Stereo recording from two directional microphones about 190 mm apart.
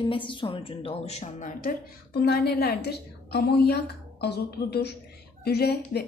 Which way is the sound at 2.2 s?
55° left (ahead or behind).